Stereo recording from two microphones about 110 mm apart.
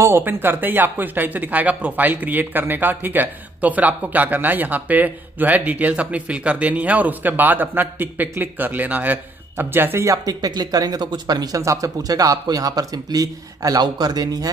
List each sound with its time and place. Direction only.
0.0 s speech: 20° right (ahead or behind); by 14.5 s 35° right (ahead or behind)